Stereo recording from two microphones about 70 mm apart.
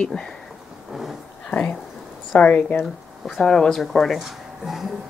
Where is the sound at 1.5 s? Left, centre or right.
Centre.